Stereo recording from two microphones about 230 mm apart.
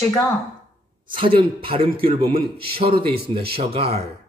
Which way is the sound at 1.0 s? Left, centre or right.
Right.